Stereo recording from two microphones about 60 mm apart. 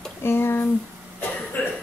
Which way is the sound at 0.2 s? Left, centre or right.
Left.